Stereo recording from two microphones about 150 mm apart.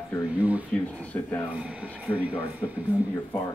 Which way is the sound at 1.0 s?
10° left (ahead or behind).